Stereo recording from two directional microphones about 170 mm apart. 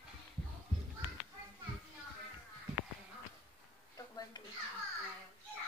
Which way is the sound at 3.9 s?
25° left (ahead or behind).